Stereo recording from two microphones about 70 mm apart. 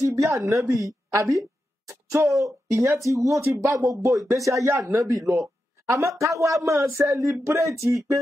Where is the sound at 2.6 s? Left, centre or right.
Right.